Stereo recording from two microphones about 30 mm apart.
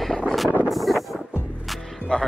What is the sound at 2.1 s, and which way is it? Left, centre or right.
Speech, left.